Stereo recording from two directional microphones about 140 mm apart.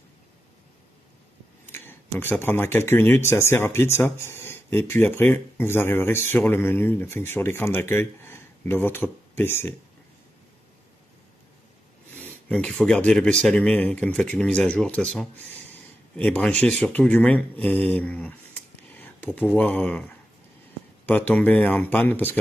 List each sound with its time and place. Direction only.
1.7 s speech: 15° left (ahead or behind)
12.1 s speech: 15° left (ahead or behind)
21.3 s speech: 10° left (ahead or behind)